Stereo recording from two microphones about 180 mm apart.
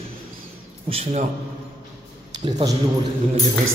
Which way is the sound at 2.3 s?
25° right (ahead or behind).